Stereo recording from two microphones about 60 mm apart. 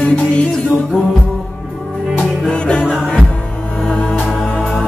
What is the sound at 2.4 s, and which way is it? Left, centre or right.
Music, centre.